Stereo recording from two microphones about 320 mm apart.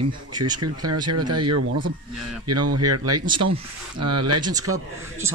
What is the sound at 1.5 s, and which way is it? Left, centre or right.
A man's voice, right.